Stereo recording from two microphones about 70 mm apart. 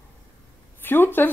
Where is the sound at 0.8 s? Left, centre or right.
Left.